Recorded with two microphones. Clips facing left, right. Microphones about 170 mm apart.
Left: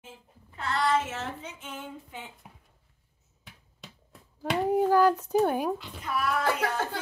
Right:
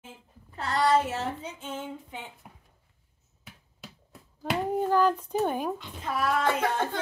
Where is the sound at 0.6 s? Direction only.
40° right (ahead or behind).